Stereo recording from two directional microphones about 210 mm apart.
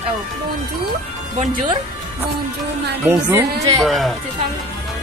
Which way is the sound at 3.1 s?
10° right (ahead or behind).